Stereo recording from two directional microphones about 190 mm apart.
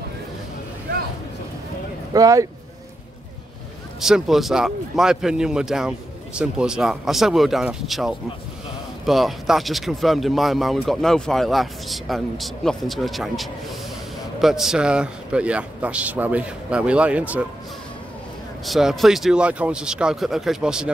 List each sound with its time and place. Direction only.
2.1 s speech: 20° right (ahead or behind)
4.0 s a man's voice: centre (ahead or behind)
18.7 s speech: centre (ahead or behind)